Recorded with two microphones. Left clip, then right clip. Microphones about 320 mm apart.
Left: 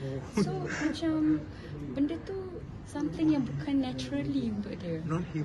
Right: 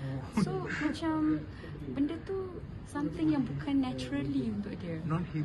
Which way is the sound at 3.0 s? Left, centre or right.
Centre.